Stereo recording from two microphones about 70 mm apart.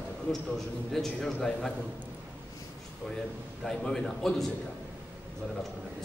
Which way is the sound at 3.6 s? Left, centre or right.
Centre.